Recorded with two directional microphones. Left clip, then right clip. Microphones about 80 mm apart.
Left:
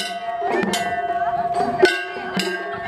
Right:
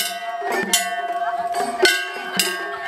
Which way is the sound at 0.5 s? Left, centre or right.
Centre.